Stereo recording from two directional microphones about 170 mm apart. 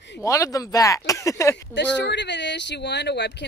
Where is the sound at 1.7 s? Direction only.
90° left.